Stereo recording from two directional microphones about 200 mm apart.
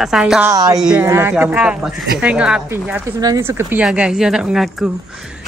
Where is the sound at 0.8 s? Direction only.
10° right (ahead or behind).